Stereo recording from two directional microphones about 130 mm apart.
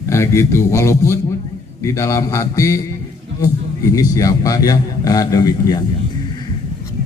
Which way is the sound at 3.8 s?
25° left (ahead or behind).